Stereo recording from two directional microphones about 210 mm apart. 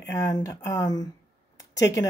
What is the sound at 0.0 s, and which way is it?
Speech, 15° left (ahead or behind).